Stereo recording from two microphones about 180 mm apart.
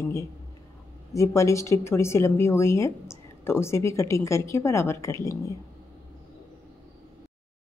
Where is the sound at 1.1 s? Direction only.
15° left (ahead or behind).